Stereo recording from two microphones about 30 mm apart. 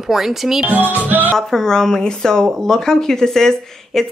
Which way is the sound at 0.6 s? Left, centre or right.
Right.